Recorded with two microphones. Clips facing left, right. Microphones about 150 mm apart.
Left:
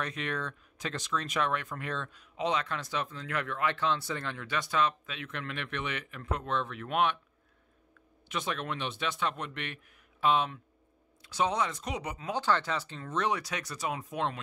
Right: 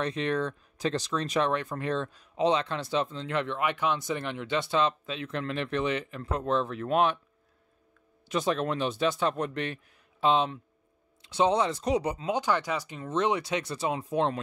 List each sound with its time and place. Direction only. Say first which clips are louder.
0.0 s speech: right 7 dB; 30° right (ahead or behind)
8.3 s speech: right 7 dB; 35° right (ahead or behind)
12.3 s speech: even; 15° right (ahead or behind); by 14.4 s 30° right (ahead or behind)